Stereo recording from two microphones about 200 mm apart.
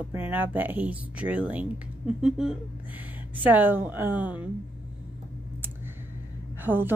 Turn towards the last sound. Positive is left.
turn(degrees=-10)  # may be behind; listen again after turning